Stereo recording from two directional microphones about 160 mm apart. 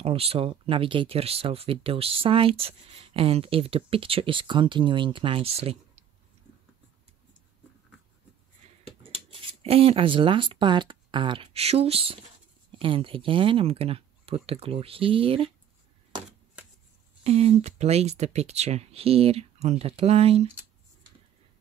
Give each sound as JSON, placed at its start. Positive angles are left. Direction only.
{"t": 0.0, "sound": "speech", "side_deg": -35}
{"t": 9.0, "sound": "speech", "side_deg": -35}
{"t": 17.2, "sound": "speech", "side_deg": -40}